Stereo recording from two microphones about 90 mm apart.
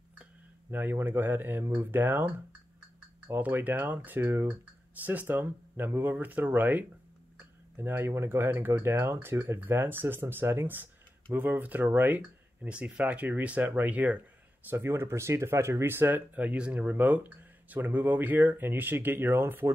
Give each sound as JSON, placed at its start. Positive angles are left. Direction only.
{"t": 0.1, "sound": "speech", "side_deg": -20}
{"t": 14.7, "sound": "speech", "side_deg": -25}